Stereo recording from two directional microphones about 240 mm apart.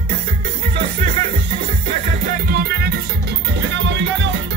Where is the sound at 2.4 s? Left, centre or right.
Right.